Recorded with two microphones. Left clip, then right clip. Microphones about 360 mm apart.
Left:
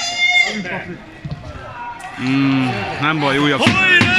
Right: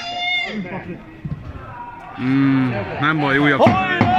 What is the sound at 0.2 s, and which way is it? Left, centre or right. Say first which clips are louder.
Goat: left 8 dB; centre.